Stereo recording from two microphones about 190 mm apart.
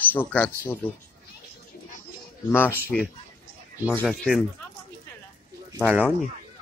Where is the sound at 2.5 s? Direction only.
10° left (ahead or behind).